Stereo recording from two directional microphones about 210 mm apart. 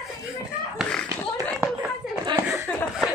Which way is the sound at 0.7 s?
5° left (ahead or behind).